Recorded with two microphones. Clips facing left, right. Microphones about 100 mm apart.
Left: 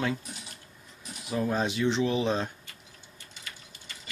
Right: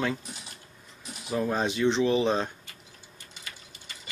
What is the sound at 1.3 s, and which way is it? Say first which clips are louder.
Speech: right 1 dB; centre (ahead or behind).